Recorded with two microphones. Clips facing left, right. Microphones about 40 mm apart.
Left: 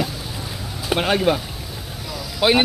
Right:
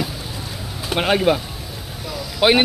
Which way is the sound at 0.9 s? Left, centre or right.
Centre.